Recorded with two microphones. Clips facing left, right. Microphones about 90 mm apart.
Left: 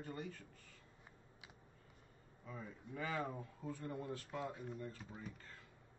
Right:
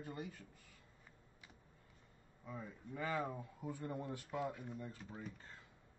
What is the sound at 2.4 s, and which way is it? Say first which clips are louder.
Speech: right 2 dB; 5° right (ahead or behind).